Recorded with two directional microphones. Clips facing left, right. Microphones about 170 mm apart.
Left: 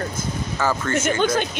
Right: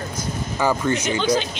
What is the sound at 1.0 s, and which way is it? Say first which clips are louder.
Speech: even; 50° left (ahead or behind).